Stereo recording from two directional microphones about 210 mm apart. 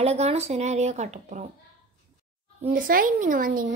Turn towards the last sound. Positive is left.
turn(degrees=-40)  # may be behind; listen again after turning